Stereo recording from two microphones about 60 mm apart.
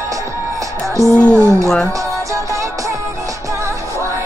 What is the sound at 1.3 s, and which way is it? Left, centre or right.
Speech, right.